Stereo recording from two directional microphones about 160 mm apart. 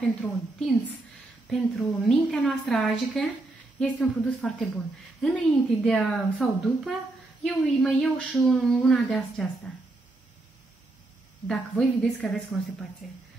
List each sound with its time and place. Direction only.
0.0 s speech: 5° left (ahead or behind)
4.4 s speech: 10° left (ahead or behind)
11.4 s speech: 5° left (ahead or behind)